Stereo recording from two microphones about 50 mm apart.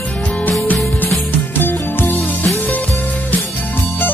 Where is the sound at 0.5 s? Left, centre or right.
Left.